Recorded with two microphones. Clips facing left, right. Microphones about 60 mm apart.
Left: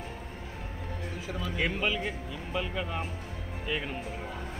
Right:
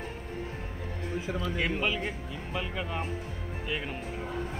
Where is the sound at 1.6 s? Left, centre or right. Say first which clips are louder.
Left 2 dB; centre.